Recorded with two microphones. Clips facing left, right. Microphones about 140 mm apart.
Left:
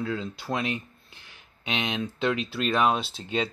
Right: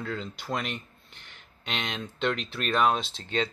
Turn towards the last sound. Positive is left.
turn(degrees=5)  # may be behind; listen again after turning